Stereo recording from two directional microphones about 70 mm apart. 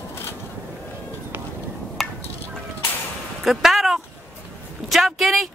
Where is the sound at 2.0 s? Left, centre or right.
Centre.